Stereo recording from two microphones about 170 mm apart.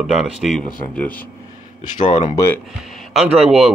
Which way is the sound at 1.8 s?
45° left (ahead or behind).